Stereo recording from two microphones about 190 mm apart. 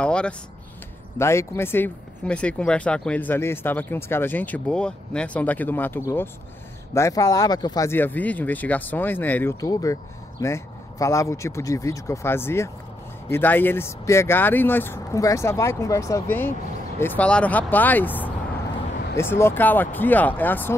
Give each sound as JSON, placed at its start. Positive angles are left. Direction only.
{"t": 0.0, "sound": "speech", "side_deg": 5}